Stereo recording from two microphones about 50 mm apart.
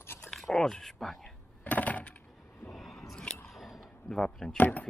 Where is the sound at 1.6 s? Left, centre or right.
Left.